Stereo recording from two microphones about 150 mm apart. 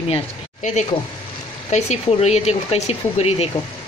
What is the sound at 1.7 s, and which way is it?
A woman's voice, 50° left (ahead or behind).